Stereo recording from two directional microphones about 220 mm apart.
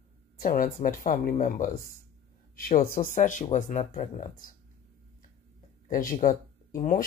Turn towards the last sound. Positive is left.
turn(degrees=40)  # may be behind; listen again after turning